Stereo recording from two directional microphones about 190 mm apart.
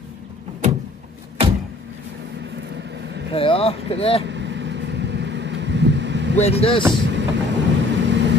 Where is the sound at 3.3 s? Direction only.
30° left (ahead or behind).